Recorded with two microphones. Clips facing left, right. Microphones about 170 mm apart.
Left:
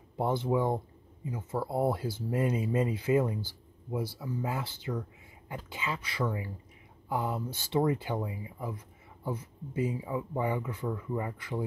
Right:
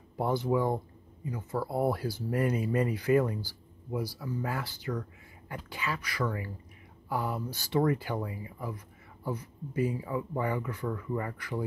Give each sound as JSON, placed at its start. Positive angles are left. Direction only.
{"t": 0.2, "sound": "speech", "side_deg": 20}